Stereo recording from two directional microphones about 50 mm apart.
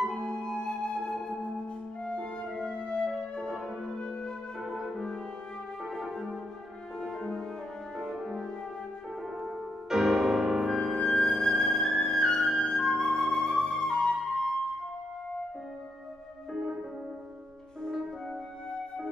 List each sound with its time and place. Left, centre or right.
0.1 s music: centre
4.6 s music: centre
5.9 s music: centre
9.4 s music: centre
11.0 s music: centre
12.4 s flute: centre
13.7 s music: centre